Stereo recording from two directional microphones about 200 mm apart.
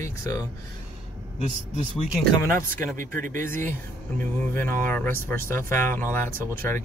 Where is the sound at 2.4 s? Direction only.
10° left (ahead or behind).